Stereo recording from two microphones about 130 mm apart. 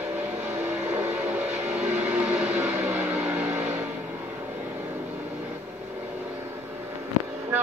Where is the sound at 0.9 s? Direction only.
10° right (ahead or behind).